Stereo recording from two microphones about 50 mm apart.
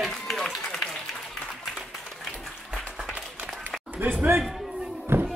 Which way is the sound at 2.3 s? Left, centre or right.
Centre.